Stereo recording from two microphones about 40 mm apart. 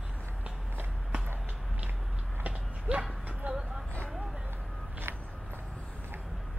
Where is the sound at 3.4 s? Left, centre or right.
Right.